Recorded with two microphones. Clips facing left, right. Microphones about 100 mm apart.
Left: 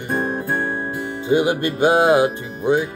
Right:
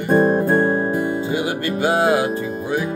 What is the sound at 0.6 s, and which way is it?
Music, 15° right (ahead or behind).